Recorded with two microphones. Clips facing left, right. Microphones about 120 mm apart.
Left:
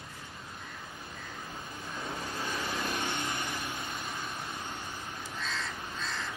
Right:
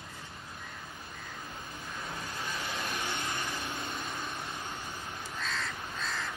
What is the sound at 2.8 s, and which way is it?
Vehicle, 40° left (ahead or behind).